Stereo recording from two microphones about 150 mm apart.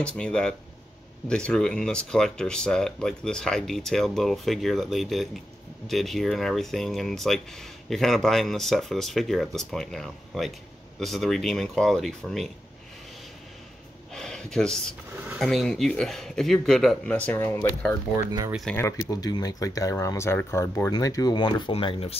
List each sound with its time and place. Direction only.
0.0 s speech: 5° left (ahead or behind)
14.1 s speech: 5° left (ahead or behind)
18.1 s speech: 25° right (ahead or behind)
18.7 s speech: 15° left (ahead or behind); by 22.1 s 35° left (ahead or behind)